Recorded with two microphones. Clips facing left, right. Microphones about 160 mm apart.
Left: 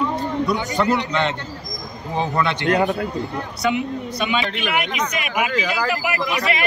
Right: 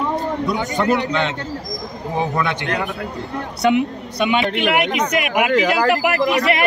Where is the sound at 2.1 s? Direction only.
15° right (ahead or behind).